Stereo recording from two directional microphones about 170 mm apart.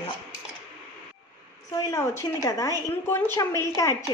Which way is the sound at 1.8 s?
20° left (ahead or behind).